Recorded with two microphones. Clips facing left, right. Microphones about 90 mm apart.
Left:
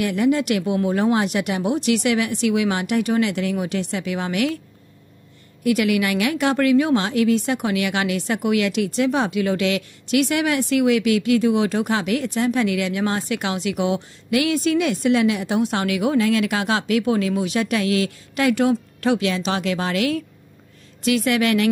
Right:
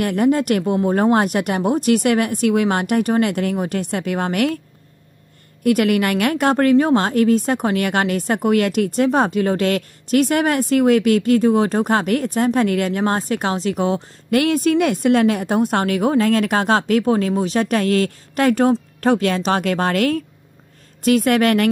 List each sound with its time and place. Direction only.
0.0 s a woman's voice: 45° right (ahead or behind)
5.6 s a woman's voice: 50° right (ahead or behind)